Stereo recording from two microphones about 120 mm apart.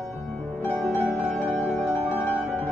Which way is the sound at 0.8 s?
5° right (ahead or behind).